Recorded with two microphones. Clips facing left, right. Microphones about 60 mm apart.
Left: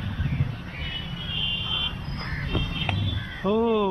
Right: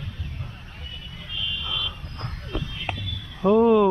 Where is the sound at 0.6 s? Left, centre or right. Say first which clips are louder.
Left 6 dB; left.